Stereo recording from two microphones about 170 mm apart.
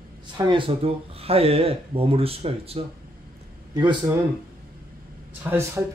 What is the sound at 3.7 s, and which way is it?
Speech, 20° right (ahead or behind).